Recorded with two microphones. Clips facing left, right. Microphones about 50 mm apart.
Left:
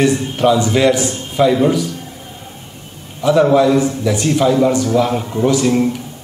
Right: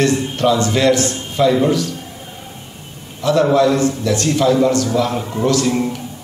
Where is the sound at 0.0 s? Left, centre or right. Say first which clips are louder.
Left 2 dB; centre.